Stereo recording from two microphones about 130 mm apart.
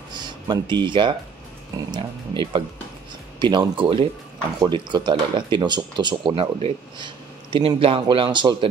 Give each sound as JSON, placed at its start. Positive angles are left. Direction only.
{"t": 0.1, "sound": "speech", "side_deg": -35}